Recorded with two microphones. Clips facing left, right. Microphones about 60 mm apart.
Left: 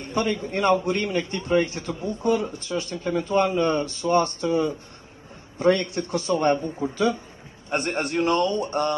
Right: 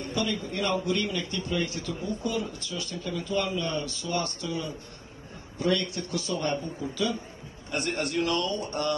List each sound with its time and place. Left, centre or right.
0.0 s a man's voice: left